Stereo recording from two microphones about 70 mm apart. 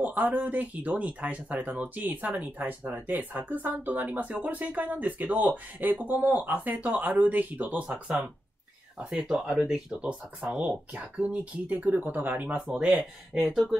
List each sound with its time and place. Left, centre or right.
0.0 s speech: right
9.1 s speech: centre
11.2 s speech: right
12.6 s speech: centre